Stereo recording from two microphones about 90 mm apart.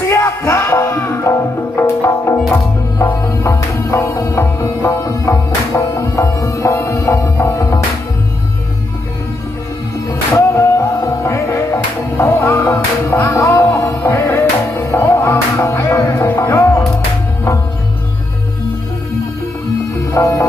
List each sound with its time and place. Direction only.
0.0 s music: 30° left (ahead or behind)
10.0 s music: 35° left (ahead or behind)
20.2 s music: 35° left (ahead or behind)